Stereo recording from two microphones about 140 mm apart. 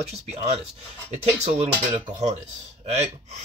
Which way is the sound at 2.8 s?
50° right (ahead or behind).